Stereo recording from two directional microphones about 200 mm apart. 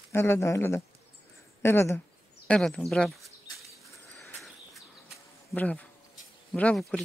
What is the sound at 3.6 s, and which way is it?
Bird flight, centre (ahead or behind).